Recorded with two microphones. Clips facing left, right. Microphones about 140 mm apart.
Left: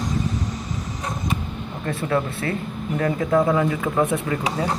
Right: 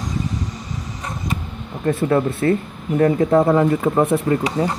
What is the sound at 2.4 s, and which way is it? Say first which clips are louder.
Speech: right 7 dB; 35° right (ahead or behind).